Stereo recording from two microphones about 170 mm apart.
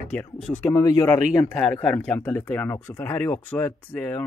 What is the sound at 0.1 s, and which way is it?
Speech, 10° left (ahead or behind).